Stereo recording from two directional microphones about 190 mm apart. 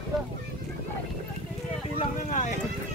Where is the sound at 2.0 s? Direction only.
40° left (ahead or behind).